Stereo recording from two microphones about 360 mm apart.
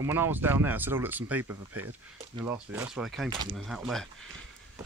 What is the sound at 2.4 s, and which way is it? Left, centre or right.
Speech, centre.